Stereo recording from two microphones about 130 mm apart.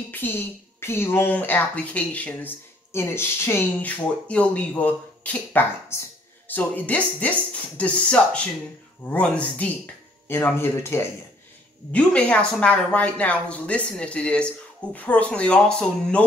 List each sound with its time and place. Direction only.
0.1 s a woman's voice: 15° left (ahead or behind)
11.9 s a woman's voice: 10° left (ahead or behind)